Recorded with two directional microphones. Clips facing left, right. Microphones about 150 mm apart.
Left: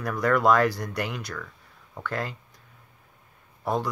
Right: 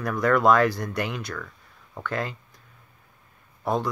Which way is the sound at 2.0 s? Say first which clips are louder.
Right 2 dB; 5° left (ahead or behind).